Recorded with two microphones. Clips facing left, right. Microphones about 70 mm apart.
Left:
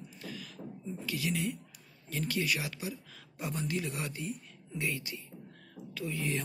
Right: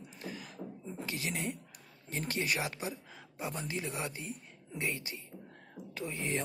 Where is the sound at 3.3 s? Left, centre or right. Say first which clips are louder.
Left 3 dB; right.